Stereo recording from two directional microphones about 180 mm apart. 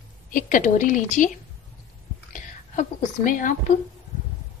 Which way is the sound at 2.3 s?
45° left (ahead or behind).